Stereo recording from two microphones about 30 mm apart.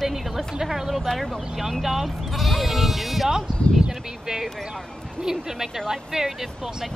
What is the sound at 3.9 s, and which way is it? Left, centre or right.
Speech, centre.